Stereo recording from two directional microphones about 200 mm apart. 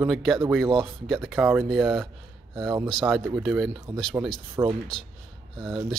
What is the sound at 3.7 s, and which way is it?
Speech, 20° right (ahead or behind).